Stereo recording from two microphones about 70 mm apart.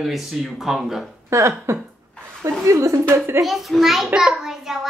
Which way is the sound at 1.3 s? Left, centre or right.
Right.